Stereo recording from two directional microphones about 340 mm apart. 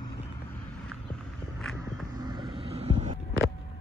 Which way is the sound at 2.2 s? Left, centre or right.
Centre.